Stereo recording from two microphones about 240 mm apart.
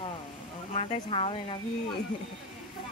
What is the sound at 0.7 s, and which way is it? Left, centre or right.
Speech, left.